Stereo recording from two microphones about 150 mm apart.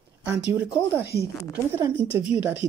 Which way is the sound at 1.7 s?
20° right (ahead or behind).